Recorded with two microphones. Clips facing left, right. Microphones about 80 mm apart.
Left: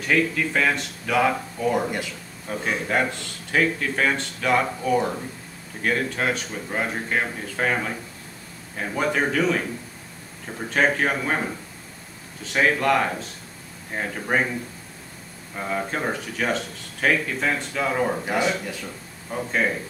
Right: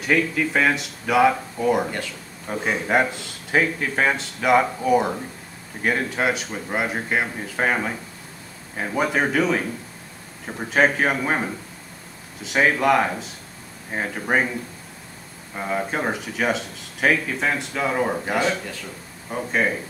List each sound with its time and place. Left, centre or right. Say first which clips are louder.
0.0 s speech: right 1 dB; centre
10.7 s speech: right 2 dB; centre
12.5 s speech: right 2 dB; centre
15.5 s speech: right 2 dB; centre